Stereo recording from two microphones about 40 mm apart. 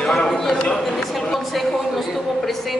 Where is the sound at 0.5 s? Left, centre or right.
Left.